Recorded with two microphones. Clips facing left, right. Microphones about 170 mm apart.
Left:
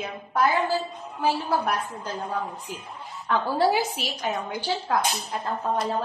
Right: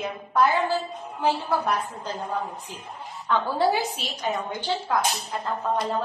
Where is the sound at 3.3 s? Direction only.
10° left (ahead or behind).